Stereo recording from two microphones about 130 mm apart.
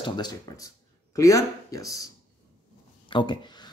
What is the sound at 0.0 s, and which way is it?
Speech, 35° left (ahead or behind).